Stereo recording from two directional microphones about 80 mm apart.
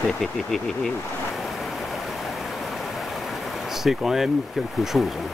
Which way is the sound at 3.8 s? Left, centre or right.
Centre.